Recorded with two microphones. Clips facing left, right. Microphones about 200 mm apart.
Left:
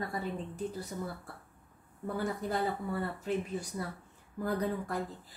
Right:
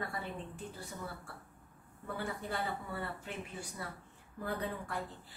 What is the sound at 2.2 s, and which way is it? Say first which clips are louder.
A woman's voice: left 6 dB; 40° left (ahead or behind).